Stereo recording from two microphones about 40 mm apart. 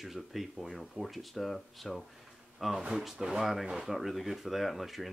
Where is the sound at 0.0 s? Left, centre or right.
Centre.